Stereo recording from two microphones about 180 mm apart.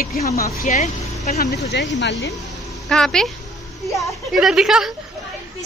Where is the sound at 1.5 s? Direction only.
70° left (ahead or behind).